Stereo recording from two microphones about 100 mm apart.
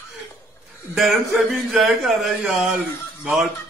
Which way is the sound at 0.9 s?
Centre (ahead or behind).